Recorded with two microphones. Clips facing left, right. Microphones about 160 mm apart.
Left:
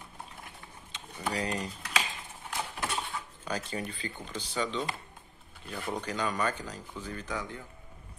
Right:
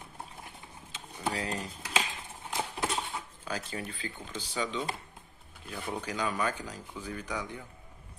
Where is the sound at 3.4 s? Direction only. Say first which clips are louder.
Left 3 dB; centre (ahead or behind).